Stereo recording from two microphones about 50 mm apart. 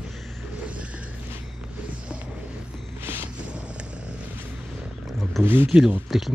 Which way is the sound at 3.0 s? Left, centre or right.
Right.